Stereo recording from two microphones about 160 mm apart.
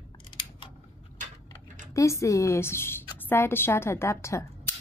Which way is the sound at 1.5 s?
20° left (ahead or behind).